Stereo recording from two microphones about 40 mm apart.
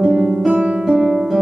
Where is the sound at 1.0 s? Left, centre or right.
Centre.